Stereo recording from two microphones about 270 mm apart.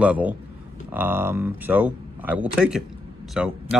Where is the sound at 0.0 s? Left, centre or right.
Centre.